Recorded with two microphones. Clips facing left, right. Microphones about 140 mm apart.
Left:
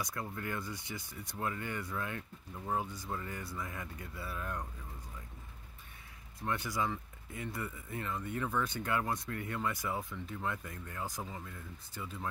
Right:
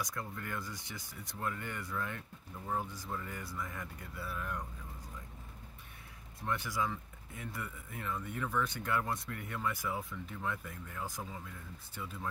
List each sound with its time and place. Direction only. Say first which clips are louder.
0.0 s speech: left 2 dB; 5° left (ahead or behind)
6.4 s speech: left 1 dB; centre (ahead or behind)